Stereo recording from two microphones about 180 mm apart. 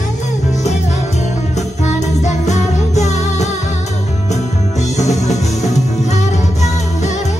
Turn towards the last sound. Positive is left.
turn(degrees=40)  # may be behind; listen again after turning